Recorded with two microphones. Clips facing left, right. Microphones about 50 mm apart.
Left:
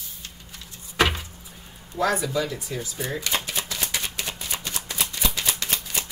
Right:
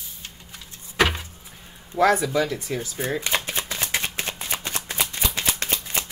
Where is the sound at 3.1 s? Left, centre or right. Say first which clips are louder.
Right 1 dB; right.